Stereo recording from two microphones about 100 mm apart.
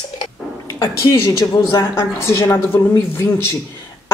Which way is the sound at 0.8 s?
35° left (ahead or behind).